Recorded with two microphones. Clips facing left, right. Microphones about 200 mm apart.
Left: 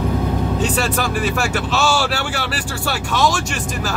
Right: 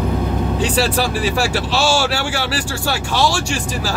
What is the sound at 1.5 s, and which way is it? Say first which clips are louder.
Speech: right 1 dB; 30° right (ahead or behind).